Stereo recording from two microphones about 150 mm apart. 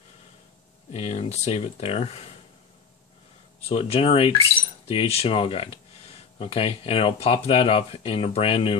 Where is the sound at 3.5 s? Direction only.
40° left (ahead or behind).